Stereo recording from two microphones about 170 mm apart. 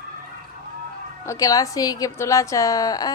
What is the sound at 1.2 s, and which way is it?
A woman's voice, 20° left (ahead or behind).